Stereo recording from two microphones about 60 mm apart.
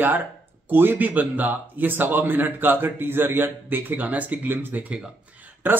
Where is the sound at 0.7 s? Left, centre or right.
Right.